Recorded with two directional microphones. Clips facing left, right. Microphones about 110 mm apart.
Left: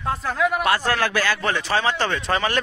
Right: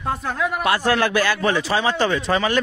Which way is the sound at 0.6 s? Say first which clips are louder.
Right 2 dB; 15° right (ahead or behind).